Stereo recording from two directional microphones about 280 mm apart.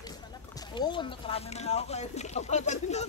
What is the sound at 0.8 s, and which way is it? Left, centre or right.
Speech, centre.